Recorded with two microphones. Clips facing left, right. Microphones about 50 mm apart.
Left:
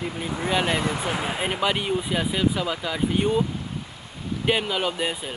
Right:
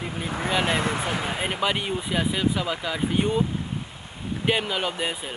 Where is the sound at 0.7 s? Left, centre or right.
Right.